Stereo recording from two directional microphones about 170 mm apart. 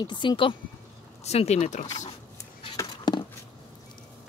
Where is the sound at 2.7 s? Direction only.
25° left (ahead or behind).